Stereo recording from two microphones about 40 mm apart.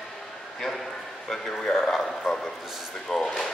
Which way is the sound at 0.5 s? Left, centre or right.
Centre.